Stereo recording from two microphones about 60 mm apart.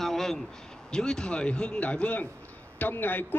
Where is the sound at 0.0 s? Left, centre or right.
Centre.